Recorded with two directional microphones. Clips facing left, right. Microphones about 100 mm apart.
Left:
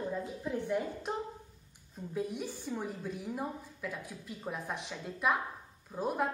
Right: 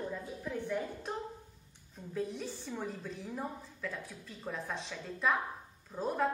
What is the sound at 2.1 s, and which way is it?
A woman's voice, 15° left (ahead or behind).